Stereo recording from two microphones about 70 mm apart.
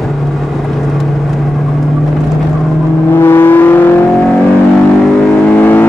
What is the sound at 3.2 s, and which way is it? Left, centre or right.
Vehicle, left.